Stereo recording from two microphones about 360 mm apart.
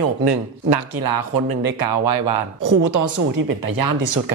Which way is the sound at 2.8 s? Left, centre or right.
Right.